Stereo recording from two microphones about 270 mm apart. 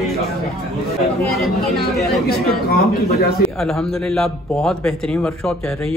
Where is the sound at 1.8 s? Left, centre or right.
Left.